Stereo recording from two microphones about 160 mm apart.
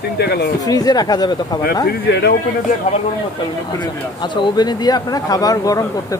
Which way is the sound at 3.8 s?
30° left (ahead or behind).